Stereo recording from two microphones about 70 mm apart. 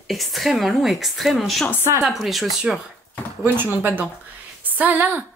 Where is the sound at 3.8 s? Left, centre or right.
Right.